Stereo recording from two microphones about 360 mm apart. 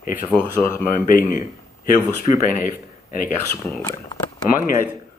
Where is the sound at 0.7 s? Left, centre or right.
Left.